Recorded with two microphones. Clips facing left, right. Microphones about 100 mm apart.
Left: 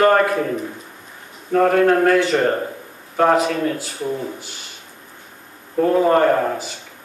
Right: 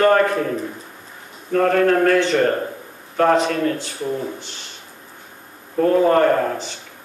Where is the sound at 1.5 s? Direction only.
25° left (ahead or behind).